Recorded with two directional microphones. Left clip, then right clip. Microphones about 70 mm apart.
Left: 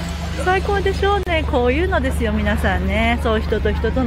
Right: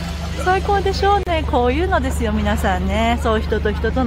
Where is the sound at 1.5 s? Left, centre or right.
Right.